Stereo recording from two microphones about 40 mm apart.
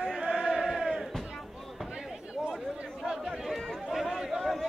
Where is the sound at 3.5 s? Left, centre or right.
Centre.